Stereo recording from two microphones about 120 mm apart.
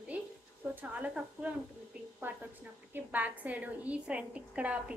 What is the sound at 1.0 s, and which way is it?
A woman's voice, 10° right (ahead or behind).